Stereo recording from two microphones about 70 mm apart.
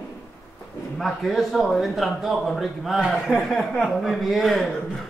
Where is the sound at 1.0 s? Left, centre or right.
Centre.